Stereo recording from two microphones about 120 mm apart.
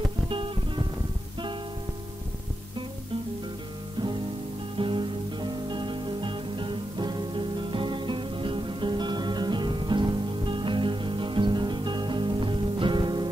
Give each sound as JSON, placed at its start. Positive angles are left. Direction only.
{"t": 0.3, "sound": "music", "side_deg": -45}
{"t": 4.7, "sound": "music", "side_deg": -45}